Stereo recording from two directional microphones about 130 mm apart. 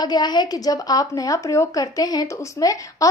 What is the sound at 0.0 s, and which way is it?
A woman's voice, 30° left (ahead or behind).